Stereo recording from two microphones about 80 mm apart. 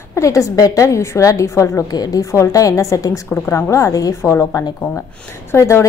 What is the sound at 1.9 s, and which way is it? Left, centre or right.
A woman's voice, left.